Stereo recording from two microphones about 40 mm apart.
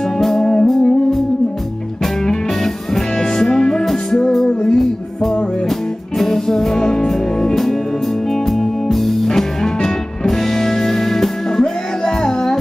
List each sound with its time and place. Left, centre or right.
0.0 s music: centre
2.2 s music: centre
4.5 s music: left
5.7 s music: centre